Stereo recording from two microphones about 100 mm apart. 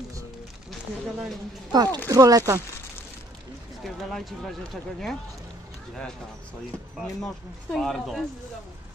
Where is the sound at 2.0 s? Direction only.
35° right (ahead or behind).